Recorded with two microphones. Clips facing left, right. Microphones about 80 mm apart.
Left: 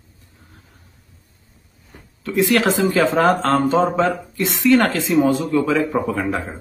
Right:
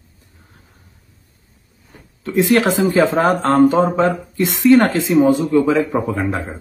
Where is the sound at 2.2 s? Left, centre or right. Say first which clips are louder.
Right 2 dB; right.